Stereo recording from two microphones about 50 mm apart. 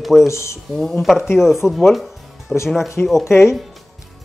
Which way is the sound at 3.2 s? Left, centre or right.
Left.